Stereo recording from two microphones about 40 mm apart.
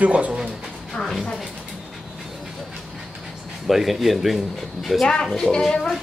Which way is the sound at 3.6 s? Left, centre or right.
Centre.